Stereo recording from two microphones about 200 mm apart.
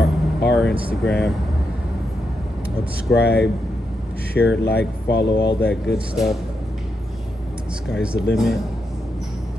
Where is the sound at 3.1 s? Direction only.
55° left (ahead or behind).